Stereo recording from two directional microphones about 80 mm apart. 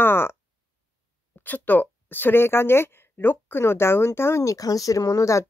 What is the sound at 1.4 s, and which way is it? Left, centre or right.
Speech, left.